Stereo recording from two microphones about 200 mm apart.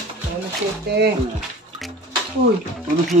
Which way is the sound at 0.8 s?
55° right (ahead or behind).